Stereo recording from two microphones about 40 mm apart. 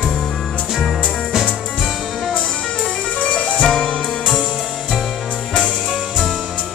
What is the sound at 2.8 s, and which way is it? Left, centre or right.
Music, left.